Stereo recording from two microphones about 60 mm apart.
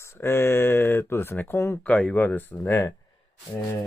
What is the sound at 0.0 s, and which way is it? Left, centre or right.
Speech, left.